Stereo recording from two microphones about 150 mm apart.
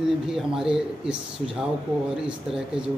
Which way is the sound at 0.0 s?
5° right (ahead or behind).